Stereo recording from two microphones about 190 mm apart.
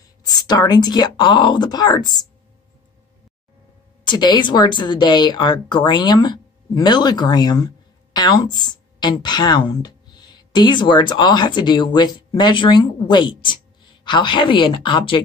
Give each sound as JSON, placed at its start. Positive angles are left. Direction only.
{"t": 0.3, "sound": "speech", "side_deg": 20}
{"t": 4.0, "sound": "speech", "side_deg": 25}